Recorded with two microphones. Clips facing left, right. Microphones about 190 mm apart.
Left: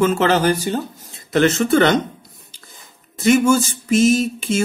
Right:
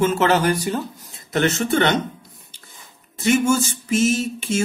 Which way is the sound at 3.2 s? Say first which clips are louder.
Left 4 dB; 40° left (ahead or behind).